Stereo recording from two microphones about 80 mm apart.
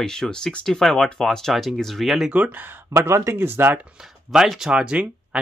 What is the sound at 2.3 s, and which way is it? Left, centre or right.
Speech, right.